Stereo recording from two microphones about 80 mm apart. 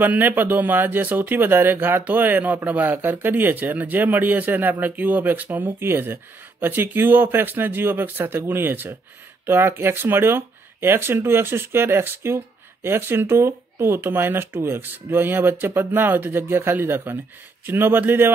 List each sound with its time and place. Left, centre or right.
0.0 s speech: right